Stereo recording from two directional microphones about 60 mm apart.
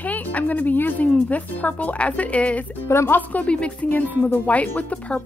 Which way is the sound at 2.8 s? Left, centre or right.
Left.